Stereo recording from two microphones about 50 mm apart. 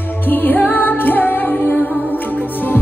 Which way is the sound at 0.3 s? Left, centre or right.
Left.